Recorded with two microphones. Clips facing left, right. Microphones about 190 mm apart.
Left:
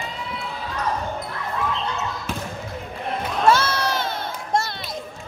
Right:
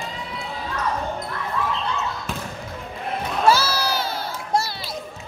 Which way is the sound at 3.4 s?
5° right (ahead or behind).